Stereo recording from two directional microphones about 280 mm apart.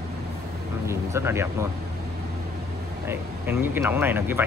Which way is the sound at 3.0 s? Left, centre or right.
Centre.